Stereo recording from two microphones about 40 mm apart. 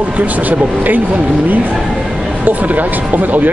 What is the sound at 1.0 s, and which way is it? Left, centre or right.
Speech, right.